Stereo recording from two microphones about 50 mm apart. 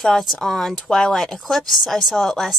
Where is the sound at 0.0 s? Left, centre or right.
Centre.